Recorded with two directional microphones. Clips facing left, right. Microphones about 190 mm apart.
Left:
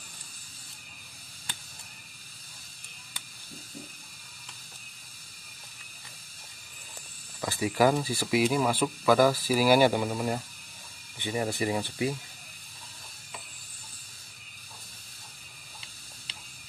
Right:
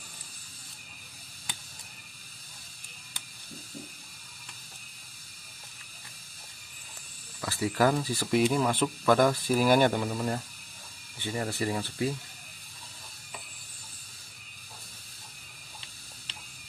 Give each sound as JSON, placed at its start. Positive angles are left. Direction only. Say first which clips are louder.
{"t": 7.4, "sound": "speech", "louder": "left 2 dB", "side_deg": 15}